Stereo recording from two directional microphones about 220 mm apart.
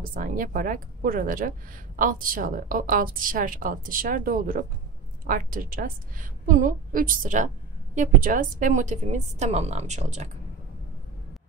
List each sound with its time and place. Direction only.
0.1 s a woman's voice: 40° right (ahead or behind)